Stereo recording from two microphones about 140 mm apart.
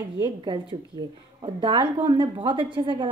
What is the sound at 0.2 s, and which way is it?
A woman's voice, 35° right (ahead or behind).